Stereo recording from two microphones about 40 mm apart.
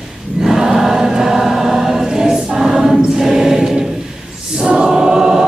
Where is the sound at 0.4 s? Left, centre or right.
Centre.